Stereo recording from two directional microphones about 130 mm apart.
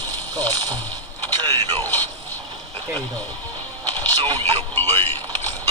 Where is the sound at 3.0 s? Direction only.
15° left (ahead or behind).